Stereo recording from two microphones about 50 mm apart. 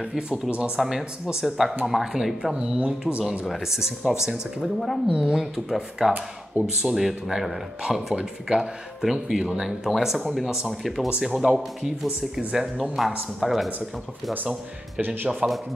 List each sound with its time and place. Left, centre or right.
0.3 s speech: right
0.7 s speech: centre
2.5 s speech: centre
3.4 s speech: centre
4.6 s speech: centre
5.1 s speech: centre
5.4 s speech: centre
14.3 s speech: right
15.4 s speech: right